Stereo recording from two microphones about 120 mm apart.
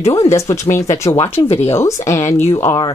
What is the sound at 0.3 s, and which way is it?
Speech, 25° left (ahead or behind).